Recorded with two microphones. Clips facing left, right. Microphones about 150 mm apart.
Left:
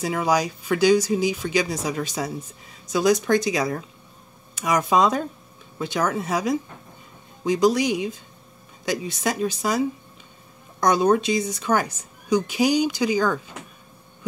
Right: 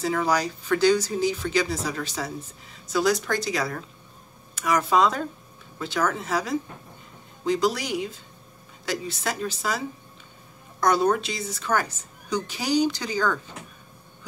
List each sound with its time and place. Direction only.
0.0 s a woman's voice: 15° left (ahead or behind)
10.8 s a woman's voice: 15° left (ahead or behind)